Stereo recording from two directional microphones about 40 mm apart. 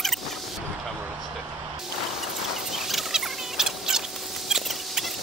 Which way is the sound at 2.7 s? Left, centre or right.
Centre.